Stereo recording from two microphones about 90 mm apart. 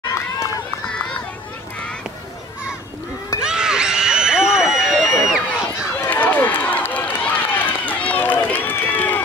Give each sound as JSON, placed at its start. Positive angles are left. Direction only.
{"t": 0.0, "sound": "run", "side_deg": 40}
{"t": 3.3, "sound": "a sound", "side_deg": -10}
{"t": 5.2, "sound": "run", "side_deg": -5}
{"t": 5.9, "sound": "run", "side_deg": 20}